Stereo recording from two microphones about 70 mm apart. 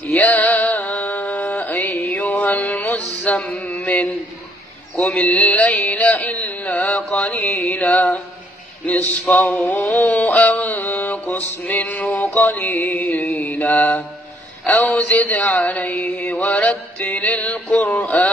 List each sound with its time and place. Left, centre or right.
0.1 s music: left
4.9 s mantra: left
9.9 s music: left
14.7 s mantra: centre